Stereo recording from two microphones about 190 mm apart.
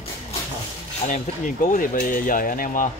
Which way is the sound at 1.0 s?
40° left (ahead or behind).